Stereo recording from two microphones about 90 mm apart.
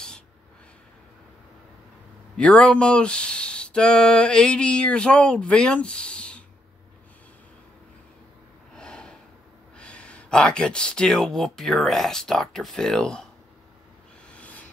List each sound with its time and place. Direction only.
2.3 s speech: 10° left (ahead or behind)
8.7 s snort: 10° left (ahead or behind)
9.8 s speech: 15° left (ahead or behind)
14.3 s a sound: 15° left (ahead or behind)